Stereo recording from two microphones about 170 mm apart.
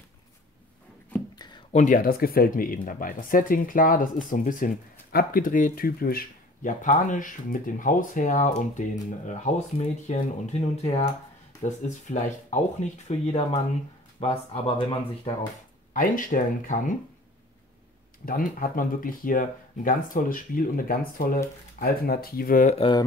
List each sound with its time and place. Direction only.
1.7 s speech: 45° left (ahead or behind)
15.9 s speech: 50° left (ahead or behind)
18.2 s speech: 55° left (ahead or behind)
22.8 s speech: 30° left (ahead or behind)